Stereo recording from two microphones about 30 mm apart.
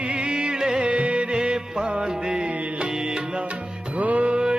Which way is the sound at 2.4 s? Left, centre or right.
Right.